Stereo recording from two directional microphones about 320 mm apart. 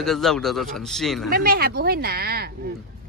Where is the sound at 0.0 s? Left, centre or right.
Centre.